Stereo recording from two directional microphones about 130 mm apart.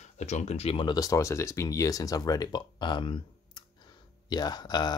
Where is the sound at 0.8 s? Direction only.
25° left (ahead or behind).